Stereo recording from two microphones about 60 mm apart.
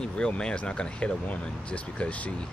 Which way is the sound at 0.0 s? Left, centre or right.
Centre.